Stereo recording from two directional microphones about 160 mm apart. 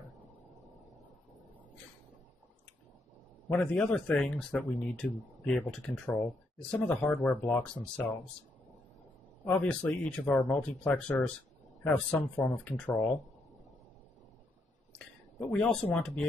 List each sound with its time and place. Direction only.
3.4 s a man's voice: 10° left (ahead or behind)
9.4 s a man's voice: 10° left (ahead or behind)
15.4 s a man's voice: 10° left (ahead or behind)